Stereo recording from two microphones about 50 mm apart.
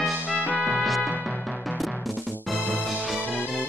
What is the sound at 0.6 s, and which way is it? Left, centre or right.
Music, centre.